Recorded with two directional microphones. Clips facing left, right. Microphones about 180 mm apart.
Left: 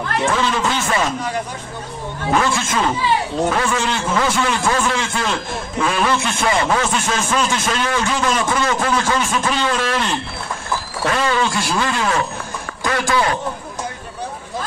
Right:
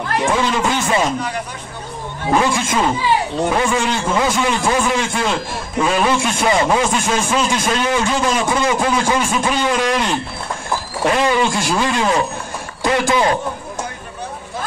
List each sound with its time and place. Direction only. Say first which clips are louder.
0.1 s a man's voice: right 2 dB; 15° right (ahead or behind)
2.3 s a man's voice: right 2 dB; 15° right (ahead or behind)